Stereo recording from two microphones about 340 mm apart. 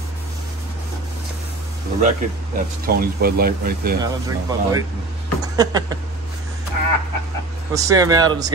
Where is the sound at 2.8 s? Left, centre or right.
Right.